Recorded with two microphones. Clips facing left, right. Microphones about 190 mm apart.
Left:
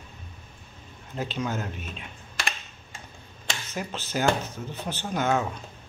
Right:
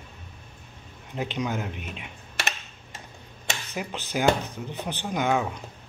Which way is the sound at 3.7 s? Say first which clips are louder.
Even; 15° right (ahead or behind).